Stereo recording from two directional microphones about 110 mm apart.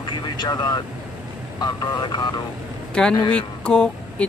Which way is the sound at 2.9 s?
10° left (ahead or behind).